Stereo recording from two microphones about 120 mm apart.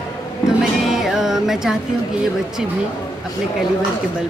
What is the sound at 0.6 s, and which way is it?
Music, 5° right (ahead or behind).